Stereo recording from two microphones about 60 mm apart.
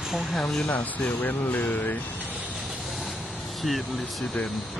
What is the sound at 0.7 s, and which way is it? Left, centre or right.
Speech, left.